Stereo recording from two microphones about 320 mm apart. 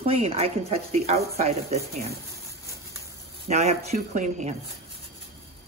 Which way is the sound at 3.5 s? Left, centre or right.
Centre.